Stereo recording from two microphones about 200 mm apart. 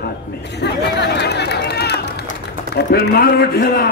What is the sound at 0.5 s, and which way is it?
A man's voice, 60° left (ahead or behind).